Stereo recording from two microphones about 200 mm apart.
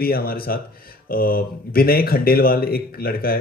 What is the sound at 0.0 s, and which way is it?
Speech, 50° left (ahead or behind).